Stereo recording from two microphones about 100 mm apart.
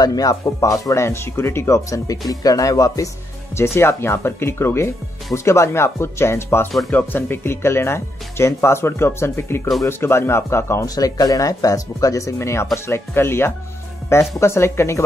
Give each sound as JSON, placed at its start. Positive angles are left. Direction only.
{"t": 0.0, "sound": "speech", "side_deg": 40}
{"t": 0.8, "sound": "speech", "side_deg": 30}